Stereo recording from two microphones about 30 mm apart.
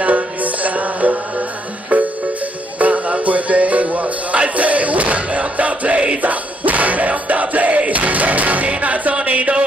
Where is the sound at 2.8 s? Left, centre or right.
Right.